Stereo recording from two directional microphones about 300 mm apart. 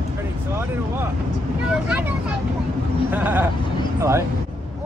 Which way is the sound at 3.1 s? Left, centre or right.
Centre.